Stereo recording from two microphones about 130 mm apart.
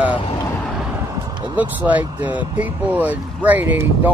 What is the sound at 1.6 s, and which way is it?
Speech, 10° right (ahead or behind).